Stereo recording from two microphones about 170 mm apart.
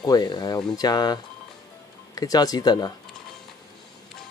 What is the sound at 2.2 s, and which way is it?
Speech, 20° left (ahead or behind).